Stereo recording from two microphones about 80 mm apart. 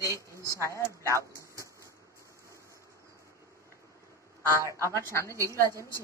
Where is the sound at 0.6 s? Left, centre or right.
Left.